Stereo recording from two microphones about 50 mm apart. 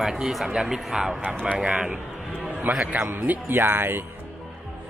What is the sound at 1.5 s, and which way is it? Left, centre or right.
Speech, centre.